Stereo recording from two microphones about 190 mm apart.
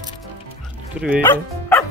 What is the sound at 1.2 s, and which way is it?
Speech, 10° left (ahead or behind).